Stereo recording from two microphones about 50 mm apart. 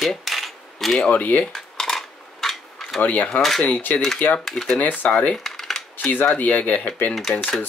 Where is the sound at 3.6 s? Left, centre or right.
Left.